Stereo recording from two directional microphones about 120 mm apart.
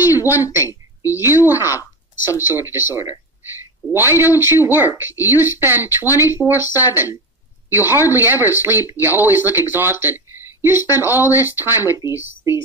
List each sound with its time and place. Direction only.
0.1 s a woman's voice: 15° right (ahead or behind)